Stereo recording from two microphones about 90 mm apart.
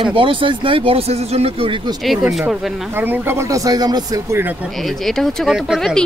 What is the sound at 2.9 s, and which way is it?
Speech, 25° right (ahead or behind).